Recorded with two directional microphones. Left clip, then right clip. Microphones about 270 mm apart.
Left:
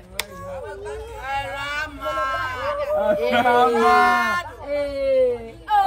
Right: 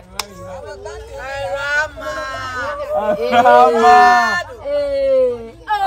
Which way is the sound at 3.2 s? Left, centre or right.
Right.